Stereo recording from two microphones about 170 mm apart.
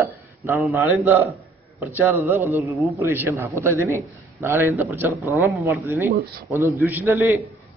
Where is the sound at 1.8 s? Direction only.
10° right (ahead or behind).